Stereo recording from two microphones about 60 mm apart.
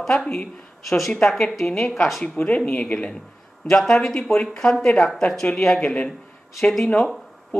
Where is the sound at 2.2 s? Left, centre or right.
Centre.